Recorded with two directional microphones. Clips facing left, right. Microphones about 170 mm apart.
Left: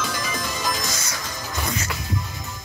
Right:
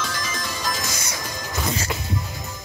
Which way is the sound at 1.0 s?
20° right (ahead or behind).